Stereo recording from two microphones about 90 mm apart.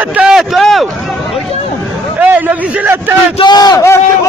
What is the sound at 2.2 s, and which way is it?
Speech, 15° right (ahead or behind).